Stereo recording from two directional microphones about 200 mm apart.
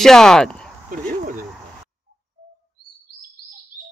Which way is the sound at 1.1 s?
45° right (ahead or behind).